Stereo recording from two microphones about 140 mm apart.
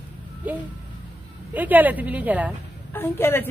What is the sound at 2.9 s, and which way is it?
Speech, 15° left (ahead or behind).